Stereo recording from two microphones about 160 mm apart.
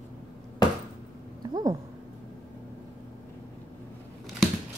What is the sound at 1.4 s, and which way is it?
Speech, 20° right (ahead or behind).